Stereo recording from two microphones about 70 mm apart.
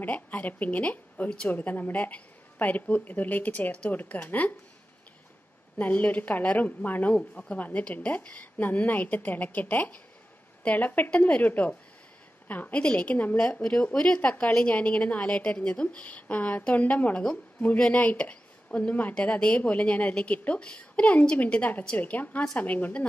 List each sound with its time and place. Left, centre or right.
0.0 s a woman's voice: left
5.8 s a woman's voice: left
13.5 s a woman's voice: centre